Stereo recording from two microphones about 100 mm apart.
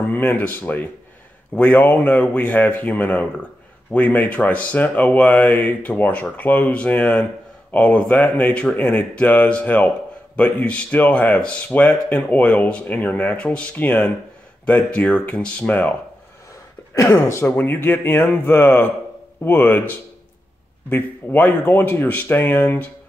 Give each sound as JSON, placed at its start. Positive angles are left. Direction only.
{"t": 0.1, "sound": "speech", "side_deg": 20}
{"t": 16.9, "sound": "speech", "side_deg": 30}
{"t": 20.9, "sound": "speech", "side_deg": 20}